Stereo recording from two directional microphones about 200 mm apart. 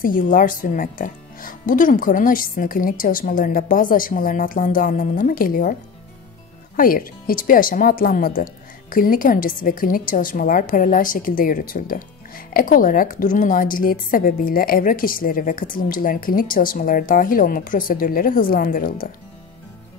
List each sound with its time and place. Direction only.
0.0 s a woman's voice: 45° left (ahead or behind)
6.8 s a woman's voice: 45° left (ahead or behind)